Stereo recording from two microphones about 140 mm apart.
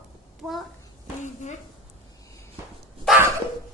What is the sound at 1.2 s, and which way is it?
Speech, 60° left (ahead or behind).